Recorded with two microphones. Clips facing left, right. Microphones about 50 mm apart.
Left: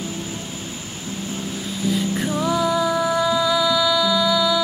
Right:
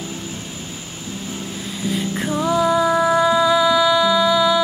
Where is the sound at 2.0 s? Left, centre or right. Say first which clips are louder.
Right 3 dB; centre.